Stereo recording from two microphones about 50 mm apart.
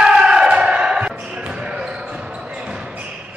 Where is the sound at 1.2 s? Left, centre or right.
Right.